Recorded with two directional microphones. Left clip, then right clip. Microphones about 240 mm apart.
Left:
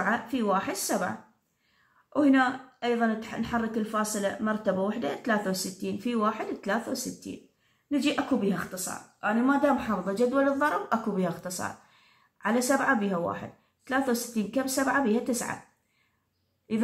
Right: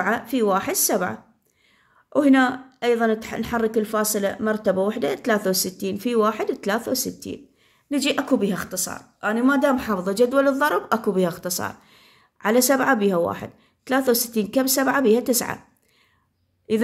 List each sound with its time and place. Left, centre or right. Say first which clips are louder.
0.0 s speech: right 6 dB; right
2.1 s speech: right 6 dB; right